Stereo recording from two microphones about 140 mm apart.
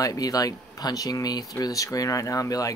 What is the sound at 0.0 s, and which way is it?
Speech, 25° left (ahead or behind).